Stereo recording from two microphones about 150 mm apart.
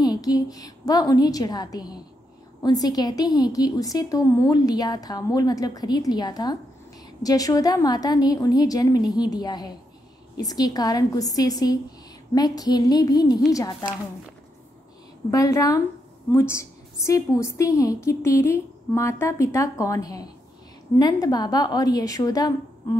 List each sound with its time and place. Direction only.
0.0 s a woman's voice: 25° left (ahead or behind)
15.3 s a woman's voice: 20° left (ahead or behind)